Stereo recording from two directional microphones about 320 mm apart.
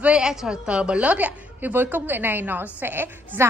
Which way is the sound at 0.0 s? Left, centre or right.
Centre.